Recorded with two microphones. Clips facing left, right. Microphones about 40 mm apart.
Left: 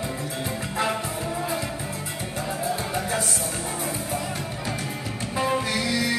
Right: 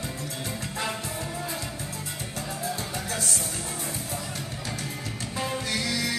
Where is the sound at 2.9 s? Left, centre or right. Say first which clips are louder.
Left 6 dB; centre.